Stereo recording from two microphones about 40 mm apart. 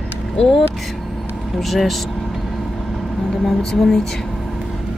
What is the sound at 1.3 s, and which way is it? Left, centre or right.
Vehicle, centre.